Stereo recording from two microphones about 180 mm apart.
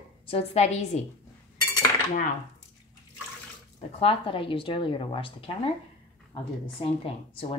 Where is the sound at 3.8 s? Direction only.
30° left (ahead or behind).